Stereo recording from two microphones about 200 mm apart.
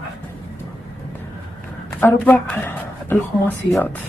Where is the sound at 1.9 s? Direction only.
10° left (ahead or behind).